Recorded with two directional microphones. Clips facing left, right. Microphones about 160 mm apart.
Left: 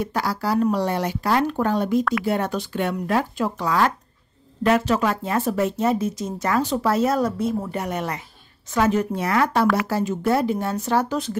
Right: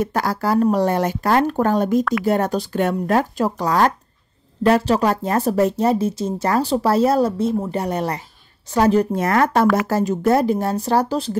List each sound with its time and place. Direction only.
0.0 s speech: 45° right (ahead or behind)